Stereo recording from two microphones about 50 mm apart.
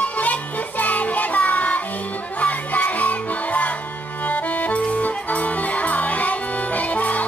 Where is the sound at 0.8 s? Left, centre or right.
Left.